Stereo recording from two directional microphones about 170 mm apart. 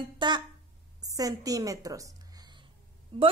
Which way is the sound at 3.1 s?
30° right (ahead or behind).